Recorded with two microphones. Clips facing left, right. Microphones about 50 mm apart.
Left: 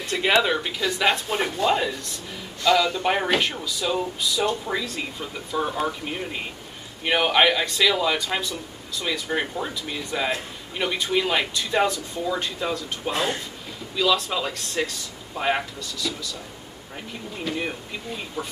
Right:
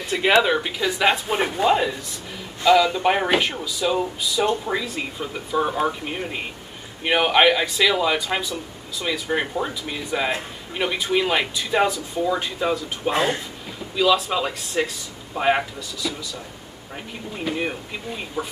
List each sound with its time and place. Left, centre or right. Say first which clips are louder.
0.0 s speech: right 3 dB; centre
13.9 s speech: right 3 dB; centre